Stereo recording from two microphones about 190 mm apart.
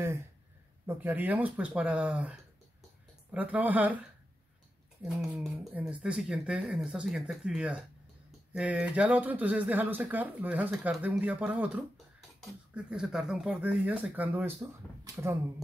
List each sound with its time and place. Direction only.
0.8 s speech: 10° right (ahead or behind)